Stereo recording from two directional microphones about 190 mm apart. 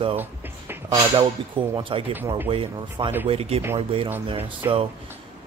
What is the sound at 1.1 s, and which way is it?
Speech, 25° right (ahead or behind).